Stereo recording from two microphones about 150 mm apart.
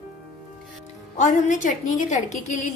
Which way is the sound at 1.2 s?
55° left (ahead or behind).